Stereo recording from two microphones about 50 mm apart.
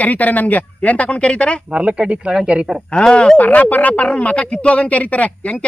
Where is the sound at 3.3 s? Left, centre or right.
Left.